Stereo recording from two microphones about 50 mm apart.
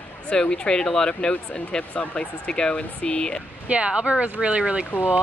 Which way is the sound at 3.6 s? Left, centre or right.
Right.